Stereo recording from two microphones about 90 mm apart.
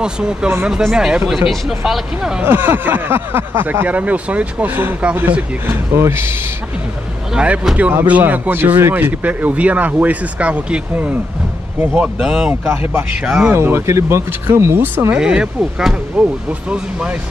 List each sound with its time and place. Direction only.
0.0 s speech: 10° right (ahead or behind)
2.4 s speech: 25° right (ahead or behind)
7.3 s speech: 15° right (ahead or behind)
12.2 s speech: 5° right (ahead or behind)
13.6 s speech: 25° right (ahead or behind)
15.1 s speech: 10° right (ahead or behind)